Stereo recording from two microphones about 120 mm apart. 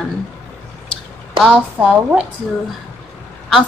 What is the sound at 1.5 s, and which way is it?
Speech, 10° right (ahead or behind).